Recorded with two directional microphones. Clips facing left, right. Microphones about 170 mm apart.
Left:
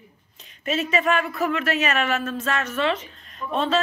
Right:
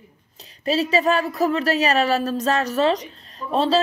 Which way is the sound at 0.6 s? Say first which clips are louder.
Right 4 dB; 35° right (ahead or behind).